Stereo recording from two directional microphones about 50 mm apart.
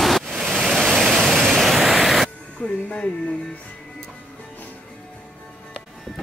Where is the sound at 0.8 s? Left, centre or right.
Centre.